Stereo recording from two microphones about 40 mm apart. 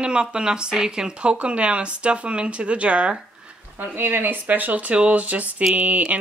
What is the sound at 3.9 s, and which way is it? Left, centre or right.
Speech, right.